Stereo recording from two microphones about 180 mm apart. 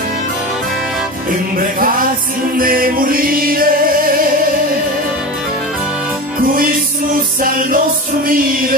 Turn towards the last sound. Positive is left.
turn(degrees=-50)  # may be behind; listen again after turning